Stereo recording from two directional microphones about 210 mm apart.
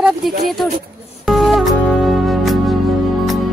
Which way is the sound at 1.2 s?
Centre (ahead or behind).